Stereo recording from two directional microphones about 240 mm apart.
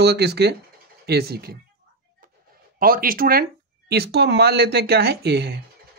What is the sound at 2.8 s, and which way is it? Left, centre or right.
Speech, right.